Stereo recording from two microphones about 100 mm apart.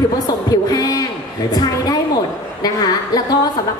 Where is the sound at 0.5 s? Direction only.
40° left (ahead or behind).